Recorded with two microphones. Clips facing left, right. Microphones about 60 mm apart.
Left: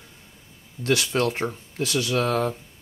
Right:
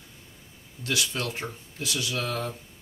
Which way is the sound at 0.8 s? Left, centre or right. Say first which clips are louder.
Left 7 dB; left.